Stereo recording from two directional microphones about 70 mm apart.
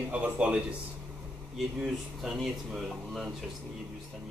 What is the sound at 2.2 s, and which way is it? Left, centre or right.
Speech, centre.